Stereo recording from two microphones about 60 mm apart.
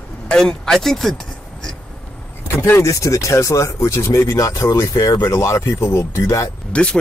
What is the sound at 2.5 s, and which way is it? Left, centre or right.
Speech, left.